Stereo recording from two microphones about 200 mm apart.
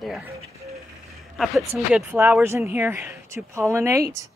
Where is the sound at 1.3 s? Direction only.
Centre (ahead or behind).